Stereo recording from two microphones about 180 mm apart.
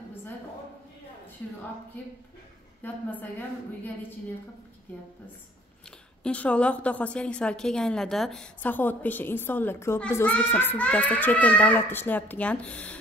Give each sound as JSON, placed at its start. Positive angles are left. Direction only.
{"t": 2.8, "sound": "a woman's voice", "side_deg": 10}
{"t": 5.9, "sound": "a woman's voice", "side_deg": 5}